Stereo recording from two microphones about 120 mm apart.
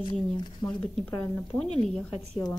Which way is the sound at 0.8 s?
10° left (ahead or behind).